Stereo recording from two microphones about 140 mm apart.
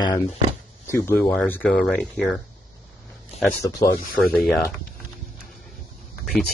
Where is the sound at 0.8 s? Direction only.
15° left (ahead or behind).